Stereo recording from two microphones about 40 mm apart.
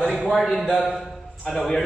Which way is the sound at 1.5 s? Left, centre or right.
Centre.